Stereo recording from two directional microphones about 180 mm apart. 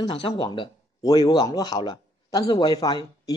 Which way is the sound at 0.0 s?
25° left (ahead or behind).